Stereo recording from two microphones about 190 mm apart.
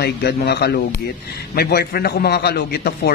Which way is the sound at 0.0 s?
60° left (ahead or behind).